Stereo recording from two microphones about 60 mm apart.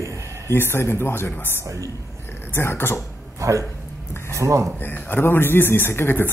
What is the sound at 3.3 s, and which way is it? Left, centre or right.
A man's voice, right.